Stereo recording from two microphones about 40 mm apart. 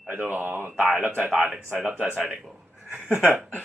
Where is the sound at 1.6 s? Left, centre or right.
Right.